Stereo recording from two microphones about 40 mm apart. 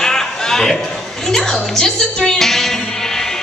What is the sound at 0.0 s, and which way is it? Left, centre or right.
Music, centre.